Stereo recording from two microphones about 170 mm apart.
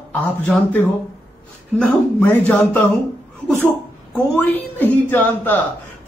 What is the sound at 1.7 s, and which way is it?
Speech, 10° left (ahead or behind).